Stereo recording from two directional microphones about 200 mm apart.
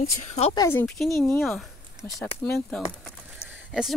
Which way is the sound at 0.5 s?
10° left (ahead or behind).